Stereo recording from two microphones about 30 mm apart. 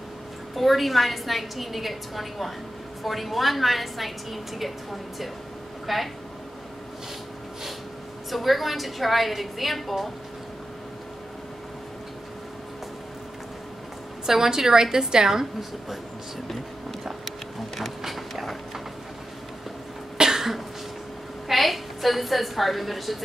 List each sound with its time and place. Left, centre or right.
0.6 s a woman's voice: centre
5.9 s a woman's voice: centre
8.3 s a woman's voice: centre
14.2 s a woman's voice: centre
18.0 s a sound: centre
20.2 s cough: centre
21.5 s a woman's voice: centre